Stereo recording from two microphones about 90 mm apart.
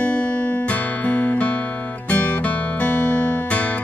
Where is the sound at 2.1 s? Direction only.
20° left (ahead or behind).